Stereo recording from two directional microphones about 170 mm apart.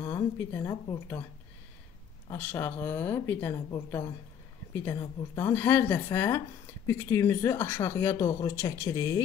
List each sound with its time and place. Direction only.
0.0 s a woman's voice: 15° left (ahead or behind)
2.3 s a woman's voice: 10° left (ahead or behind)